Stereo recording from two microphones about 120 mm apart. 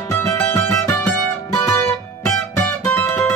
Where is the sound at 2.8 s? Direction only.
20° left (ahead or behind).